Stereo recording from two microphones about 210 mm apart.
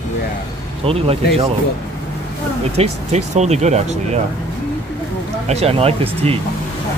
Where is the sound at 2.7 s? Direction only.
30° right (ahead or behind).